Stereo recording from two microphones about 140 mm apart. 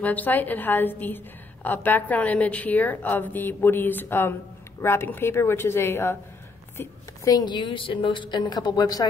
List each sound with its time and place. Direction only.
0.0 s a woman's voice: 10° left (ahead or behind); by 9.0 s 30° left (ahead or behind)